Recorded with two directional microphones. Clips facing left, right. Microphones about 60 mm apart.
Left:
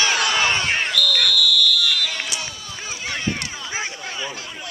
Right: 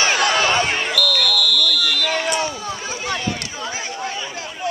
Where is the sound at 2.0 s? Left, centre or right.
Right.